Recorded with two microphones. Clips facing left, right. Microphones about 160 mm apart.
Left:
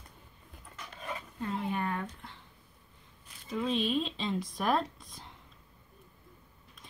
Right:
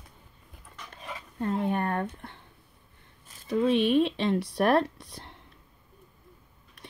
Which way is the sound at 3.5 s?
65° right (ahead or behind).